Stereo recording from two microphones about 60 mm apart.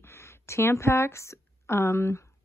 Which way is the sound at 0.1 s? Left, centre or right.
Left.